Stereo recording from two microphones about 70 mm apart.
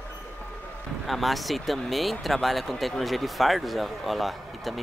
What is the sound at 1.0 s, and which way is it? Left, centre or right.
Speech, centre.